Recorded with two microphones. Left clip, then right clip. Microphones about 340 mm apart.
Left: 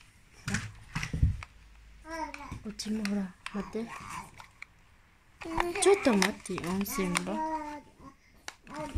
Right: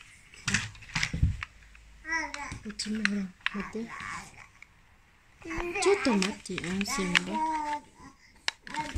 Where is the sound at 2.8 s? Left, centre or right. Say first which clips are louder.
Right 4 dB; centre.